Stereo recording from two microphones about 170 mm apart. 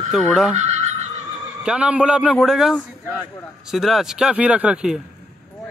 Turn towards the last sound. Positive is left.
turn(degrees=-5)  # may be behind; listen again after turning